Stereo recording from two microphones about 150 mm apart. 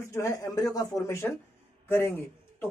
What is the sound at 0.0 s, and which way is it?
A man's voice, 20° left (ahead or behind).